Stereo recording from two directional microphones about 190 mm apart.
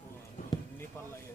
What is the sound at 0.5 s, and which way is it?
Basketball bounce, 20° left (ahead or behind).